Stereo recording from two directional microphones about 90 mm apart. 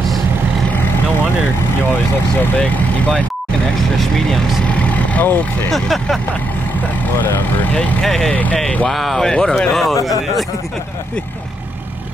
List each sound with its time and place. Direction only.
2.4 s speech: 15° left (ahead or behind)
4.0 s speech: centre (ahead or behind)
4.6 s vehicle: 15° left (ahead or behind)
5.7 s speech: 5° left (ahead or behind)
7.7 s speech: 15° left (ahead or behind)
8.0 s speech: 5° left (ahead or behind)